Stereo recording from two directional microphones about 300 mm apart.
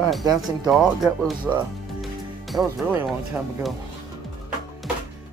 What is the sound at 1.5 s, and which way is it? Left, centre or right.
Speech, centre.